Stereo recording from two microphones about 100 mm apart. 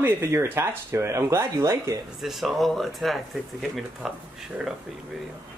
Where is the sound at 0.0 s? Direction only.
25° right (ahead or behind).